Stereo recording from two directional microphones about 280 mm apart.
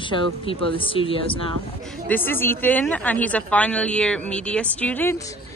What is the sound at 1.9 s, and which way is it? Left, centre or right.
A woman's voice, centre.